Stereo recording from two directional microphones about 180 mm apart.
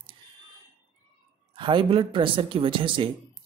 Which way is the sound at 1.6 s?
25° right (ahead or behind).